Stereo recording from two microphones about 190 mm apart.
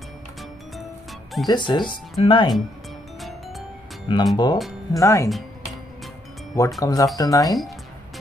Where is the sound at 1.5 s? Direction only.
25° left (ahead or behind).